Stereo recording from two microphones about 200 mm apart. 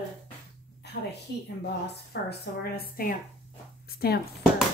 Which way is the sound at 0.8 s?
55° left (ahead or behind).